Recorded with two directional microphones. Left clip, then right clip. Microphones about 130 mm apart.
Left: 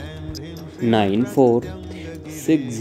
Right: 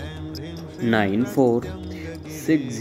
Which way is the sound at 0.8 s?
25° left (ahead or behind).